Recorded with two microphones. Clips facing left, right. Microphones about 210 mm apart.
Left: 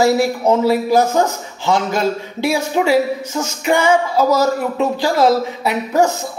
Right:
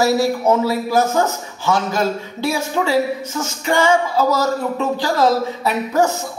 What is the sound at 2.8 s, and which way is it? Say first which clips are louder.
A man's voice: left 3 dB; 15° left (ahead or behind).